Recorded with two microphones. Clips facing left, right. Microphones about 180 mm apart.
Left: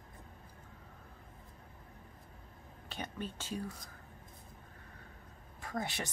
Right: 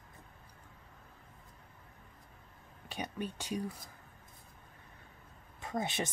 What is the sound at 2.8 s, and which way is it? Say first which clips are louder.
Speech: right 3 dB; 15° right (ahead or behind).